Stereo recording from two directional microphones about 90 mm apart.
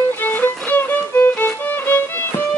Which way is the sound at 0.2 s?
20° left (ahead or behind).